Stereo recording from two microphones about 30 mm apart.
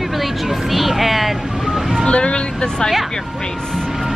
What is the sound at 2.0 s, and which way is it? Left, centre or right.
Speech, left.